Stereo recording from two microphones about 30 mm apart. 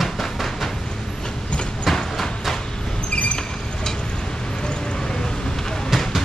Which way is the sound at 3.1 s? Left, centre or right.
Left.